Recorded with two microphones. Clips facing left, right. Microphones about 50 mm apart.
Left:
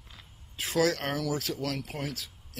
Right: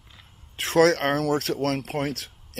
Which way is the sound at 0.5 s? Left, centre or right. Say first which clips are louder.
Right 8 dB; right.